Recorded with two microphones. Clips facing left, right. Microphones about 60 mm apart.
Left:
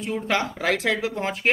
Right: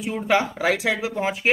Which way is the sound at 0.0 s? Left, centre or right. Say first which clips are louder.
Right 3 dB; centre.